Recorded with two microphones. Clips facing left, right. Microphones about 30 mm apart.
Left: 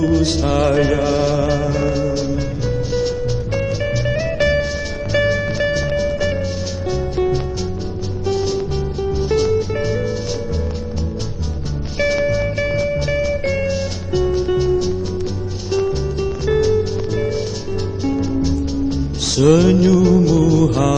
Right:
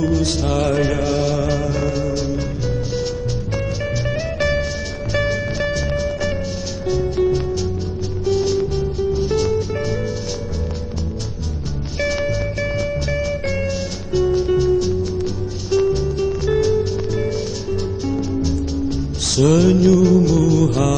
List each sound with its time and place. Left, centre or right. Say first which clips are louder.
0.0 s music: left 3 dB; centre
0.6 s mantra: left 3 dB; left
0.8 s music: left 3 dB; centre
3.8 s music: left 3 dB; centre
12.0 s music: left 4 dB; centre